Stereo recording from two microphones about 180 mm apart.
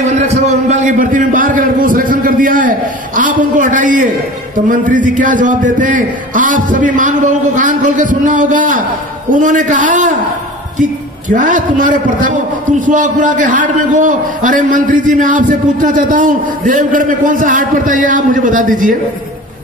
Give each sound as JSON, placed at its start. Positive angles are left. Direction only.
{"t": 0.0, "sound": "a man's voice", "side_deg": -40}